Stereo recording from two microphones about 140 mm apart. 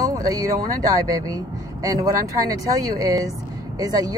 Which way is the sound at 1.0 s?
25° right (ahead or behind).